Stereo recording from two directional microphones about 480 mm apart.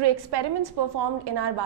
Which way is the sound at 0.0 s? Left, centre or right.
Right.